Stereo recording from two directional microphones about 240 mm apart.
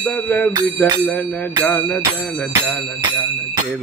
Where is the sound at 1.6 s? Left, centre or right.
Centre.